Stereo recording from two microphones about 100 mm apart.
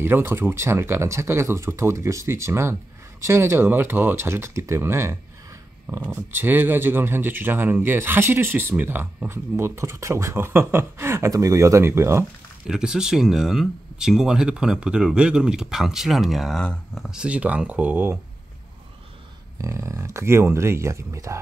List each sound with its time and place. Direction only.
0.0 s speech: 25° right (ahead or behind)
12.6 s speech: 5° right (ahead or behind)
17.2 s speech: 15° right (ahead or behind)
19.6 s speech: 30° right (ahead or behind)